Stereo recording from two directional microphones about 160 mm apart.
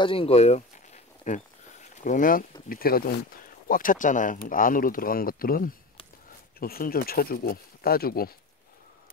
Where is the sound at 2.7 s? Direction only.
70° left (ahead or behind).